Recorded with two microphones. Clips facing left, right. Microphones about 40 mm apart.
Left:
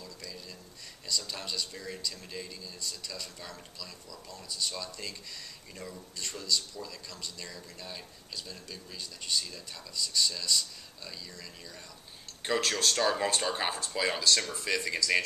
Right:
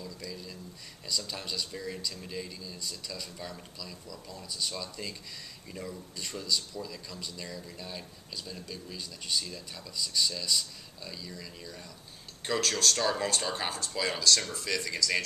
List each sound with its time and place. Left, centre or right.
0.0 s a sound: centre
1.0 s a man's voice: centre
12.4 s speech: centre